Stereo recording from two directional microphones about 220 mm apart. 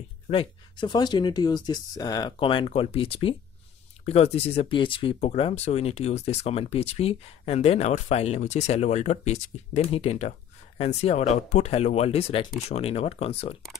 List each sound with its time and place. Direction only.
0.3 s speech: 25° left (ahead or behind)